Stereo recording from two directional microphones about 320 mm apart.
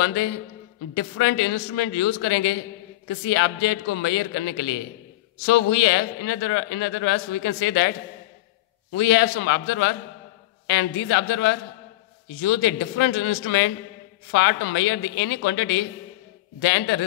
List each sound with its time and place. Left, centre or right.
0.0 s a man's voice: left
8.9 s a man's voice: left